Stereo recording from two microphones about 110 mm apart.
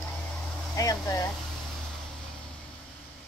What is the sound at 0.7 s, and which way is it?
Speech, 30° left (ahead or behind).